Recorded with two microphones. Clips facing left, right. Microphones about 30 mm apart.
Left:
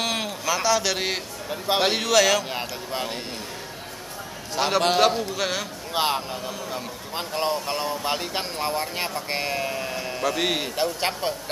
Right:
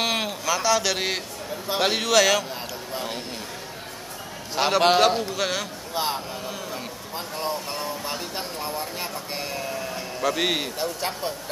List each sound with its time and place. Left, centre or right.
0.0 s a sound: centre
0.5 s speech: centre
2.5 s speech: left
4.6 s a man's voice: centre
5.9 s a man's voice: left
10.2 s speech: centre
10.8 s speech: left